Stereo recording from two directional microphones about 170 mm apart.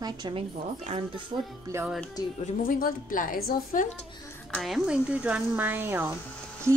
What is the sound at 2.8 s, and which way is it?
A woman's voice, 55° left (ahead or behind).